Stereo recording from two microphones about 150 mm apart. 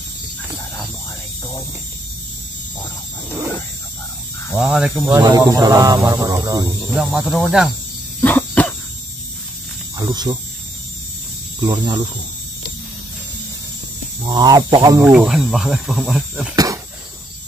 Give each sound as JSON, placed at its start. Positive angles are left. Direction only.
{"t": 4.6, "sound": "speech", "side_deg": -5}
{"t": 5.4, "sound": "hum", "side_deg": -20}
{"t": 6.9, "sound": "speech", "side_deg": -10}
{"t": 8.2, "sound": "a sound", "side_deg": 15}
{"t": 9.9, "sound": "hum", "side_deg": -25}
{"t": 11.6, "sound": "hum", "side_deg": -30}
{"t": 14.2, "sound": "hum", "side_deg": -25}
{"t": 15.0, "sound": "speech", "side_deg": -5}
{"t": 16.5, "sound": "a sound", "side_deg": -25}